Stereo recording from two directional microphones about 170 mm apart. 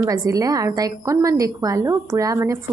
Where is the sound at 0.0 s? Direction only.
20° right (ahead or behind).